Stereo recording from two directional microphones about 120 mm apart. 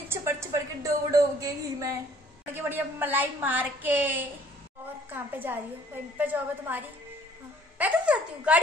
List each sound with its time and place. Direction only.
0.1 s a sound: 20° right (ahead or behind)
2.5 s a woman's voice: 15° right (ahead or behind)
7.8 s a woman's voice: 10° right (ahead or behind)